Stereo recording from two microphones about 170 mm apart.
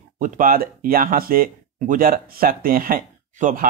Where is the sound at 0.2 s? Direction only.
55° right (ahead or behind).